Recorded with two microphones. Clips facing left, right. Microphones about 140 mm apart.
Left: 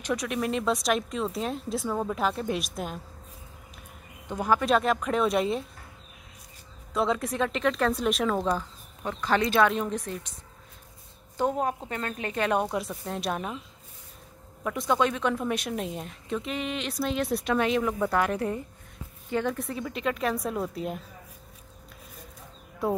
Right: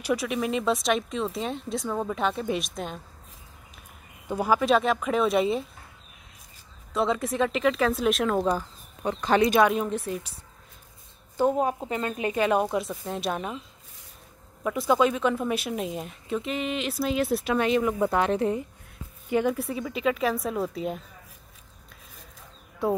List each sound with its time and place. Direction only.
0.0 s a woman's voice: 5° right (ahead or behind)
4.3 s a woman's voice: 10° right (ahead or behind)
6.9 s a woman's voice: centre (ahead or behind)
9.0 s speech: 20° right (ahead or behind)
11.3 s a woman's voice: 5° right (ahead or behind)
14.6 s a woman's voice: 5° right (ahead or behind)
17.9 s speech: 20° right (ahead or behind)
19.2 s a woman's voice: 10° right (ahead or behind)
22.8 s a woman's voice: centre (ahead or behind)